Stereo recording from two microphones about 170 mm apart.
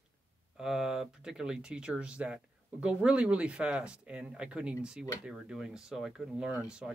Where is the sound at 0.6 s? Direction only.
5° right (ahead or behind).